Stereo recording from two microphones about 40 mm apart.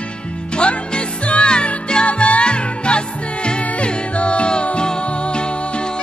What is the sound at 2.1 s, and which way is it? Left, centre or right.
Music, left.